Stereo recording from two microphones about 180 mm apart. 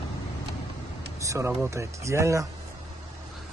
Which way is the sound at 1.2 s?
15° right (ahead or behind).